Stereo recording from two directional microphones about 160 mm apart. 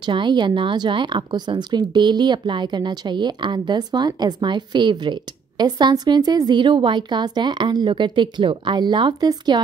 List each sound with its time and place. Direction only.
0.0 s speech: 30° right (ahead or behind)